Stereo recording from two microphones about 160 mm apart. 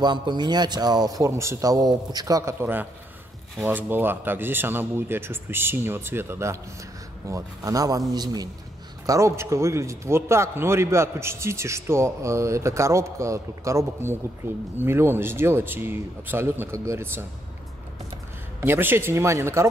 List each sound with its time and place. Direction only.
0.0 s a man's voice: 30° right (ahead or behind)
18.6 s a man's voice: 15° right (ahead or behind)